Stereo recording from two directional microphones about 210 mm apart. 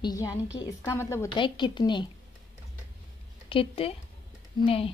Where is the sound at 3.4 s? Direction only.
25° left (ahead or behind).